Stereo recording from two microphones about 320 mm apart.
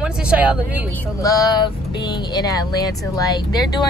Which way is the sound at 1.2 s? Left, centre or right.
Centre.